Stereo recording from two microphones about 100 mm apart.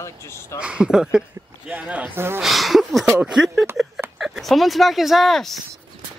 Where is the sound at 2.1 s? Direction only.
25° right (ahead or behind).